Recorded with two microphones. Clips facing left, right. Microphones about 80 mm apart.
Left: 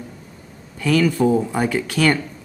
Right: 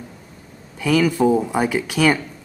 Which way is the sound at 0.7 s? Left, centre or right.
Centre.